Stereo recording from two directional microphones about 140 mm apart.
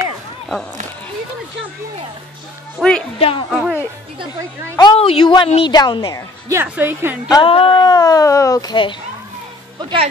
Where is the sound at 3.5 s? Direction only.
5° right (ahead or behind).